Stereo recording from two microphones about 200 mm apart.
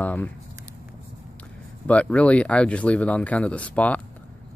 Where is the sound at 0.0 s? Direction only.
10° left (ahead or behind).